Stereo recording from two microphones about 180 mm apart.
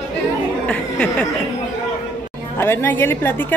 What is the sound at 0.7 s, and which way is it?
Speech, 5° left (ahead or behind).